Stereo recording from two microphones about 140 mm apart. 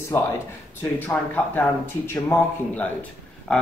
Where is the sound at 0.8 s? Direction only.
15° left (ahead or behind).